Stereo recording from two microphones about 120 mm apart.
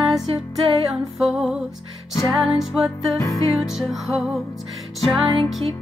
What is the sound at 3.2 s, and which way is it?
Music, 30° left (ahead or behind).